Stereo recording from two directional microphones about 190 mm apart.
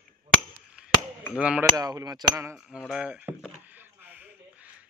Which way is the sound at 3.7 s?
10° right (ahead or behind).